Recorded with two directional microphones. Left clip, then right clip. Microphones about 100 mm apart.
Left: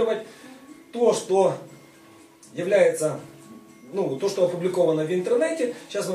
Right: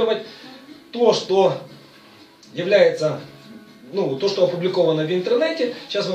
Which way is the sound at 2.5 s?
10° left (ahead or behind).